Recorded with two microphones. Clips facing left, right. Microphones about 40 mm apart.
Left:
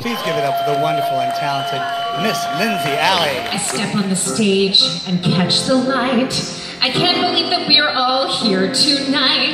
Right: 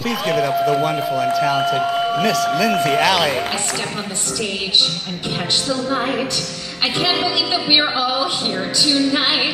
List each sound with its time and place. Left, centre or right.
0.3 s a man's voice: centre
4.4 s music: centre